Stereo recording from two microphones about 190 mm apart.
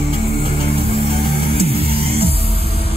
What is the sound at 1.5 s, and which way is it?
Music, 30° right (ahead or behind).